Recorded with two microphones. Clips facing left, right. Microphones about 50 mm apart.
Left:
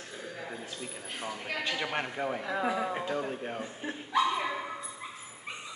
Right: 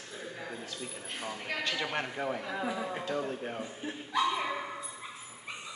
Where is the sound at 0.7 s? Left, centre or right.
Centre.